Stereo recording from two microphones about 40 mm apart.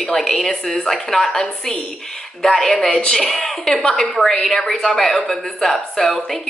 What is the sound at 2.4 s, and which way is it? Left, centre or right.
A woman's voice, centre.